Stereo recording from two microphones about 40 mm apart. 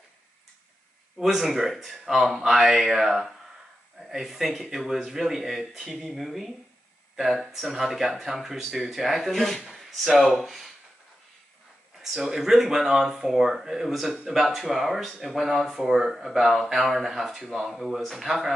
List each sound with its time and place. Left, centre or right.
1.2 s speech: centre
12.0 s speech: centre
14.4 s speech: centre